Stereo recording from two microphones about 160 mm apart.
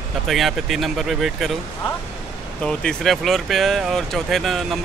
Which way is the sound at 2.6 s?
5° left (ahead or behind).